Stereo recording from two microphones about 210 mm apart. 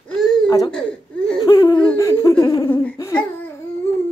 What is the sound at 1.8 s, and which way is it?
Laughter, 10° left (ahead or behind).